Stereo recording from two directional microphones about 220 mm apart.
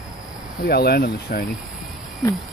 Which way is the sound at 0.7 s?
45° left (ahead or behind).